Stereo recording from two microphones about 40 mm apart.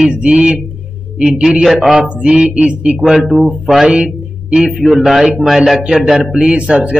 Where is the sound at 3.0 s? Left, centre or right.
Centre.